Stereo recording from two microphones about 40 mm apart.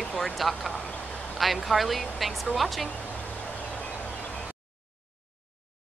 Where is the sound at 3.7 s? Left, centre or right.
Left.